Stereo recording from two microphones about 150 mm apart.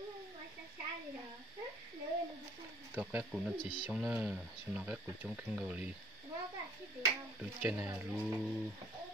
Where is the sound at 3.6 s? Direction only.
35° left (ahead or behind).